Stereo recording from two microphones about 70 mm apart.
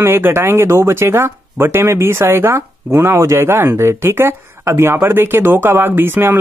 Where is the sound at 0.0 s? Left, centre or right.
Right.